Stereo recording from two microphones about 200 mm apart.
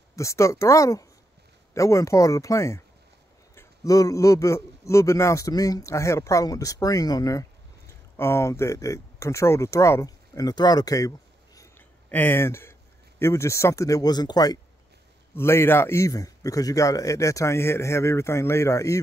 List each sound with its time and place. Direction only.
0.1 s a man's voice: 15° left (ahead or behind)